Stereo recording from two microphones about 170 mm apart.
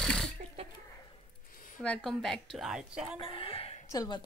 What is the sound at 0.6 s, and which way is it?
Speech, 35° right (ahead or behind).